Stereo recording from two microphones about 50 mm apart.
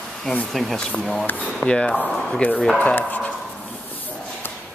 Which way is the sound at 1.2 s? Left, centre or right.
Left.